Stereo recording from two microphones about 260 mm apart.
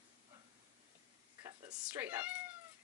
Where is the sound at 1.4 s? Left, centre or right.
Centre.